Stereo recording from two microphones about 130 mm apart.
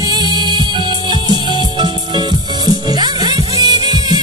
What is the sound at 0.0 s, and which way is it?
Music, 35° right (ahead or behind).